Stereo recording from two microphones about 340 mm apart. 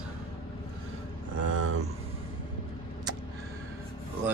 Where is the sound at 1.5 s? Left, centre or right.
Right.